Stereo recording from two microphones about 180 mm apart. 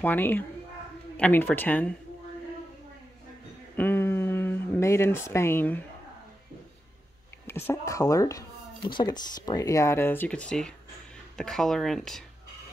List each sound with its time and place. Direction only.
0.0 s speech: 10° left (ahead or behind)
3.7 s a sound: 10° left (ahead or behind)
7.4 s speech: 15° left (ahead or behind)